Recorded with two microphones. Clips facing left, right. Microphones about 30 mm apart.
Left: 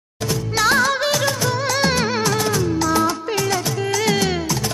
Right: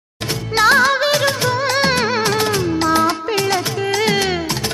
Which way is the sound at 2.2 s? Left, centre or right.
Right.